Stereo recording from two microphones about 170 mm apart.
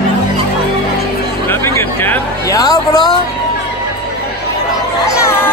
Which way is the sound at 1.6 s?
15° left (ahead or behind).